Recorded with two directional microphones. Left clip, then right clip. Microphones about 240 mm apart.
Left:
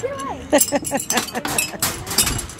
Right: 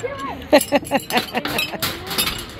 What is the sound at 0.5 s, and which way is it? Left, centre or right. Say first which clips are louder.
Speech: right 3 dB; centre.